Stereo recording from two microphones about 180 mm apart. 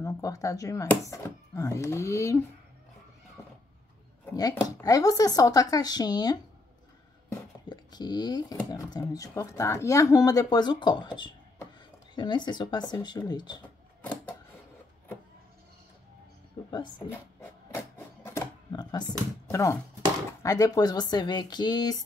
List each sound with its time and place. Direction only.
0.0 s speech: 20° left (ahead or behind)
4.3 s speech: 20° left (ahead or behind)
7.2 s a sound: 25° left (ahead or behind)
8.6 s speech: 20° left (ahead or behind)
16.7 s speech: 25° left (ahead or behind)
17.4 s a sound: 15° left (ahead or behind)
18.7 s computer keyboard: 25° left (ahead or behind)
19.5 s speech: 15° left (ahead or behind)